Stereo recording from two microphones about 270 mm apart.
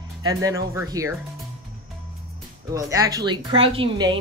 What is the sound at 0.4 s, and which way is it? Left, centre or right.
Speech, centre.